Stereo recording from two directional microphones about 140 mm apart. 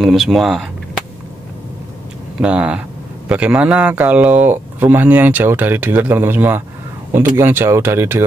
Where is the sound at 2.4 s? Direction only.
10° right (ahead or behind).